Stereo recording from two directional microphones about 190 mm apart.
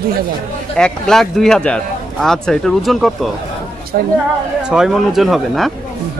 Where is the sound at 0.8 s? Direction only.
Centre (ahead or behind).